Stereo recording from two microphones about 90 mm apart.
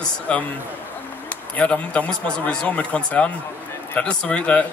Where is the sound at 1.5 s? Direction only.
15° left (ahead or behind).